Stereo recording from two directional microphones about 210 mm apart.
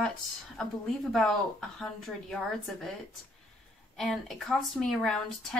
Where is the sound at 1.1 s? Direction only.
Centre (ahead or behind).